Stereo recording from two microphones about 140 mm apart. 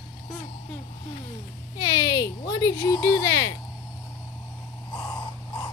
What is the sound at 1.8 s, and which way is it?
Speech, 30° left (ahead or behind).